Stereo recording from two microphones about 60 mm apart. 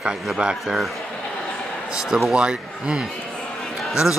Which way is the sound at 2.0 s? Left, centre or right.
Centre.